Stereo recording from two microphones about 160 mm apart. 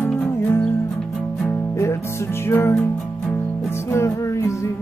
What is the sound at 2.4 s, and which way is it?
Music, 15° left (ahead or behind).